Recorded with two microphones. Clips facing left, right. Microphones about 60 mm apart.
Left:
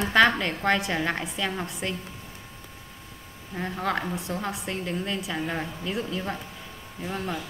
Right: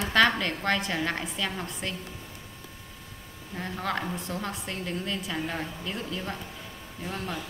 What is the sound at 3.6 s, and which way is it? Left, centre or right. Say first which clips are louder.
A woman's voice: left 3 dB; centre.